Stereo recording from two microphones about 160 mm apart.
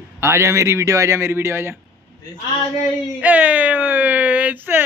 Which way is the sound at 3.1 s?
10° right (ahead or behind).